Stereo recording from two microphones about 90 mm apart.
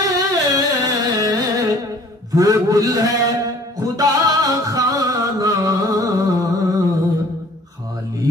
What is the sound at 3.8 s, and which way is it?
Music, 45° right (ahead or behind).